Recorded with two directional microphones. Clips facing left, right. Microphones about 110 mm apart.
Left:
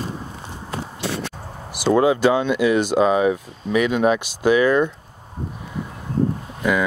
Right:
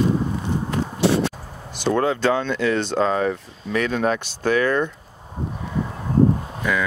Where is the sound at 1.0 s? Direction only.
30° right (ahead or behind).